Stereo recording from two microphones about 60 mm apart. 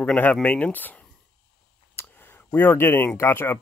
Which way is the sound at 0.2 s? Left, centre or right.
Left.